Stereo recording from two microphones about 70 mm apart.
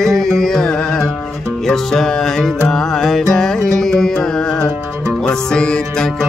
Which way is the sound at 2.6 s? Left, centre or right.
Centre.